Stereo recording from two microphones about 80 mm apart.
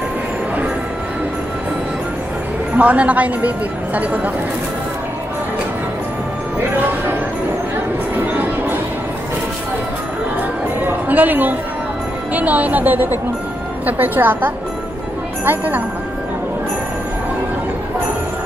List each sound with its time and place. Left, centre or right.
2.7 s a woman's voice: centre
10.9 s a sound: right
12.4 s speech: centre